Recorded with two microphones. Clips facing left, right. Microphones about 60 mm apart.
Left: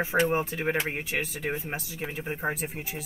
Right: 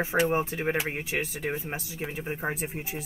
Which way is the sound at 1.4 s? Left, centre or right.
Centre.